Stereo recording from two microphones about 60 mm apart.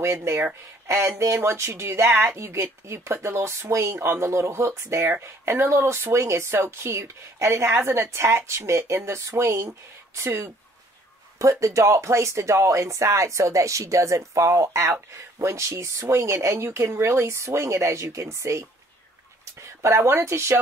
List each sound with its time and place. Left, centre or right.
0.0 s speech: right
9.3 s speech: right
11.6 s speech: right
19.8 s speech: right